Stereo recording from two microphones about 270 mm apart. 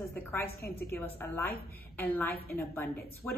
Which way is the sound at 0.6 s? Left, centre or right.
Left.